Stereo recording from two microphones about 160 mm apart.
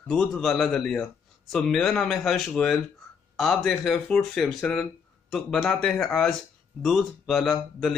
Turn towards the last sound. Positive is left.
turn(degrees=0)  # may be behind; listen again after turning